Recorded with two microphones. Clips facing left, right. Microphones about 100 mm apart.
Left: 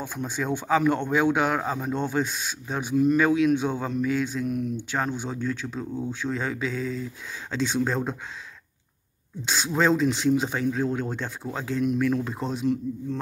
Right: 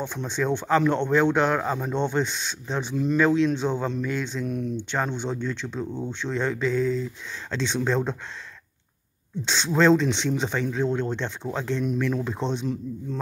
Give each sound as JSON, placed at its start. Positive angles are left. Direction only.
{"t": 0.0, "sound": "speech", "side_deg": 5}
{"t": 4.5, "sound": "speech", "side_deg": -35}
{"t": 4.7, "sound": "speech", "side_deg": 5}
{"t": 9.4, "sound": "speech", "side_deg": 5}